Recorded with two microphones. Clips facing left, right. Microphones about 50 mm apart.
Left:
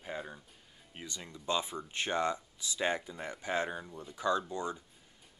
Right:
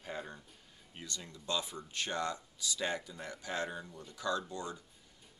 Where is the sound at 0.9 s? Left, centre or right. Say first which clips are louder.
Left 1 dB; centre.